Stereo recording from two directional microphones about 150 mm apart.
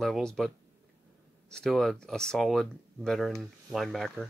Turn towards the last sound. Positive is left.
turn(degrees=0)  # may be behind; listen again after turning